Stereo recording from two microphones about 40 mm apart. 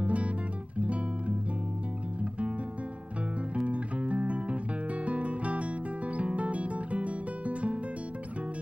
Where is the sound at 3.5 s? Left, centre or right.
Right.